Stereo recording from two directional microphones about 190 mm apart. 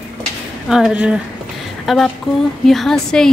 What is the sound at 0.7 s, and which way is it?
Speech, 5° right (ahead or behind).